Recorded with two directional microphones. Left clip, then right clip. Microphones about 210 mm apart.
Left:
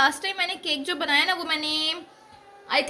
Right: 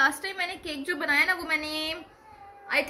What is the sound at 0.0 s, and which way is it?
A woman's voice, 35° left (ahead or behind).